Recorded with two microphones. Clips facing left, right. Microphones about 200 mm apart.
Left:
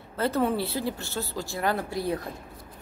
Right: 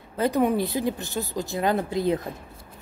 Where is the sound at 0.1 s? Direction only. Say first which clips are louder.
Right 3 dB; 15° right (ahead or behind).